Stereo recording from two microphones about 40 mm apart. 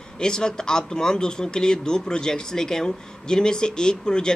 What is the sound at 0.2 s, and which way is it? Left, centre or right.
Speech, centre.